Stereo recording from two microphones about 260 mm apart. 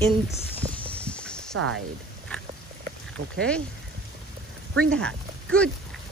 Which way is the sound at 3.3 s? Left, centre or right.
Centre.